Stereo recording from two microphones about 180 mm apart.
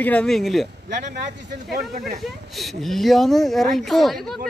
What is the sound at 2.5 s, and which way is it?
Speech, centre (ahead or behind).